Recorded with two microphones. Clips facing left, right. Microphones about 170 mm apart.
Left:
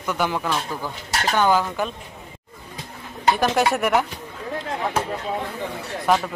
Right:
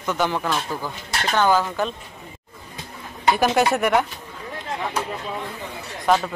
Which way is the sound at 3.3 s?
Centre (ahead or behind).